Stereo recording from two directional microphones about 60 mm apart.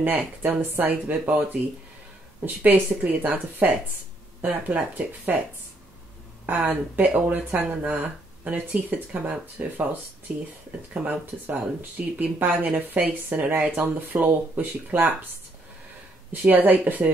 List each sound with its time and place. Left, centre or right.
0.2 s speech: right
6.4 s speech: right
16.3 s speech: right